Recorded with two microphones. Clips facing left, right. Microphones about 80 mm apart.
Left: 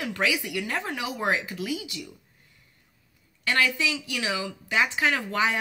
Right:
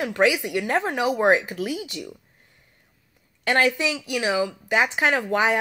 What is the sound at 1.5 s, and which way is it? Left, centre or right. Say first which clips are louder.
Speech: right 3 dB; right.